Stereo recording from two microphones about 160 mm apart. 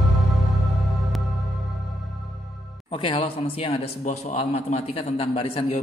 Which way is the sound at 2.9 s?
35° left (ahead or behind).